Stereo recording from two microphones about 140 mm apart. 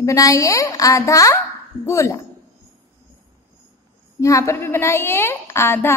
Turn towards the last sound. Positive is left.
turn(degrees=15)  # may be behind; listen again after turning